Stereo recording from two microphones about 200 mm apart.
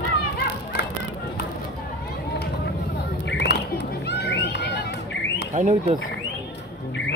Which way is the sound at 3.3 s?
60° left (ahead or behind).